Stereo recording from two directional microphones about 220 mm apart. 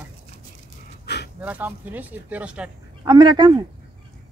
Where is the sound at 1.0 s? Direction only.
50° left (ahead or behind).